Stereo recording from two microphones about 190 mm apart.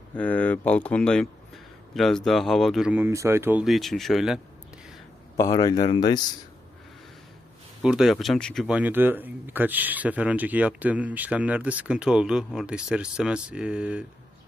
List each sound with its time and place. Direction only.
0.1 s speech: 10° left (ahead or behind)
5.4 s speech: 20° left (ahead or behind)
7.8 s speech: centre (ahead or behind)
8.6 s speech: 10° right (ahead or behind)